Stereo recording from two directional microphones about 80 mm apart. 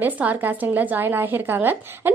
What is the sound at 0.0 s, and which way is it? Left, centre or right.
A woman's voice, right.